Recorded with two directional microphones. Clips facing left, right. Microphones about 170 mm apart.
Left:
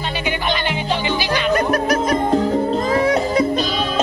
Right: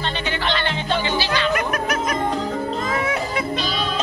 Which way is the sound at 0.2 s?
15° left (ahead or behind).